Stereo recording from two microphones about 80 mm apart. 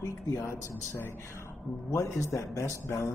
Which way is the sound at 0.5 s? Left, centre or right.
Left.